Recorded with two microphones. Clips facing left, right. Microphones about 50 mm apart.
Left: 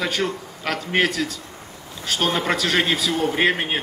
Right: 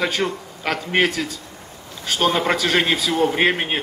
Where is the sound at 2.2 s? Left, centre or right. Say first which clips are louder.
Right 3 dB; centre.